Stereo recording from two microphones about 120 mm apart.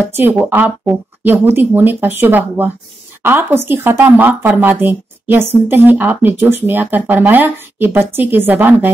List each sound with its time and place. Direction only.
0.1 s a woman's voice: 15° right (ahead or behind)